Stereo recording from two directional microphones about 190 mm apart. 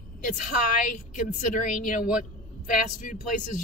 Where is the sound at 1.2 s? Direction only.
40° left (ahead or behind).